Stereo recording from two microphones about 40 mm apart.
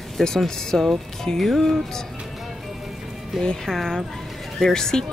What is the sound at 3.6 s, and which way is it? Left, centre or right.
Speech, centre.